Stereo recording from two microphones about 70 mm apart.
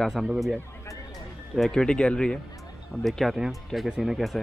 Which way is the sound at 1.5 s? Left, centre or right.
Centre.